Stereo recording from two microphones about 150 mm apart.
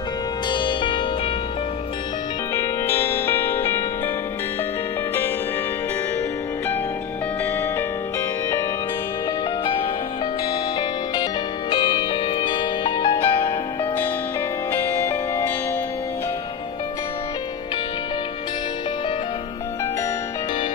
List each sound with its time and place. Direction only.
0.5 s music: 30° left (ahead or behind)
2.5 s music: 15° left (ahead or behind)
11.7 s music: 30° left (ahead or behind)
14.9 s music: 15° left (ahead or behind)